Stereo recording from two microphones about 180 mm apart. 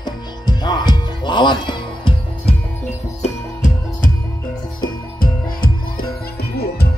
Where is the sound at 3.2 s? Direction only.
45° left (ahead or behind); by 6.9 s 60° left (ahead or behind).